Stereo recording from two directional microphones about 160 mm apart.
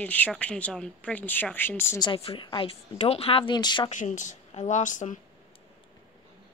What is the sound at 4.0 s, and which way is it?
Speech, 50° left (ahead or behind).